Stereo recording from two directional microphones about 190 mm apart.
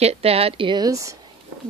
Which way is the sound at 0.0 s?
30° right (ahead or behind).